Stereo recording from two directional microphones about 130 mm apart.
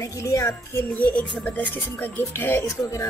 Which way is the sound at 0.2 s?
25° left (ahead or behind).